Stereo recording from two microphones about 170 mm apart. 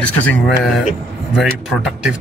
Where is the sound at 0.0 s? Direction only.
10° left (ahead or behind).